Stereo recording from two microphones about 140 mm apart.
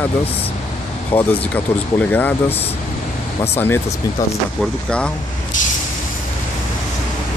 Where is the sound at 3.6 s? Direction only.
15° left (ahead or behind).